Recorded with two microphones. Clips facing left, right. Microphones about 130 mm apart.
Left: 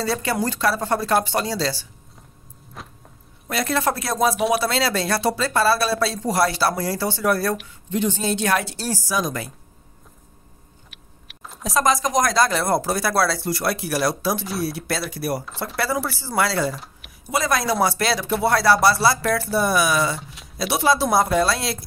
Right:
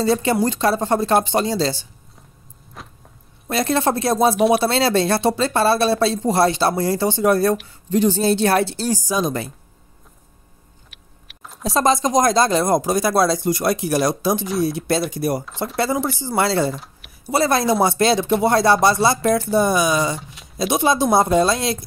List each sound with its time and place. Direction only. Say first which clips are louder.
0.0 s speech: right 5 dB; 20° right (ahead or behind)
2.8 s vehicle: even; centre (ahead or behind)
3.4 s speech: right 3 dB; 25° right (ahead or behind)
4.4 s speech: right 5 dB; centre (ahead or behind)
4.6 s speech: right 5 dB; 25° right (ahead or behind)
7.6 s speech: right 5 dB; 35° right (ahead or behind)
10.9 s a sound: left 1 dB; centre (ahead or behind)
11.6 s speech: right 3 dB; 30° right (ahead or behind)
15.4 s speech: right 4 dB; centre (ahead or behind)
15.7 s speech: right 3 dB; 20° right (ahead or behind)
16.7 s speech: right 3 dB; centre (ahead or behind)
17.3 s speech: right 4 dB; 30° right (ahead or behind)